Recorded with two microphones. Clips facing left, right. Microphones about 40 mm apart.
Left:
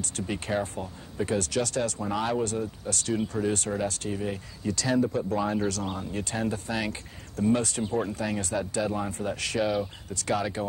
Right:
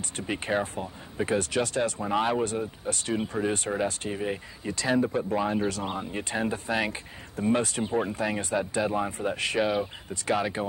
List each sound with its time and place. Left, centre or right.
0.0 s speech: right